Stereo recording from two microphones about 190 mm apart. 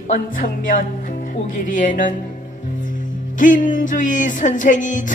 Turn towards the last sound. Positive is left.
turn(degrees=40)  # may be behind; listen again after turning